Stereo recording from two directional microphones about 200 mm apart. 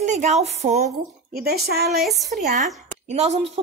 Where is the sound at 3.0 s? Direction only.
35° right (ahead or behind).